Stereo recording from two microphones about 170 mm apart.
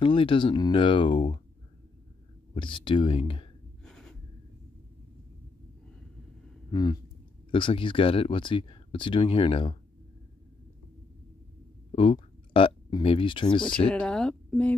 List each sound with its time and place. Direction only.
0.0 s speech: 30° left (ahead or behind)
2.5 s speech: 30° left (ahead or behind)
3.8 s a sound: 5° left (ahead or behind)
6.7 s speech: 25° left (ahead or behind)
11.9 s speech: 30° left (ahead or behind)
13.7 s speech: 5° left (ahead or behind)